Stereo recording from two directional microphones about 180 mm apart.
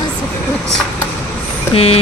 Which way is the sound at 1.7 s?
35° left (ahead or behind).